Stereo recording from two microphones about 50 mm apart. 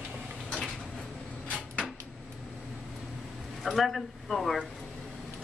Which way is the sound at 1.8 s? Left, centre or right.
Centre.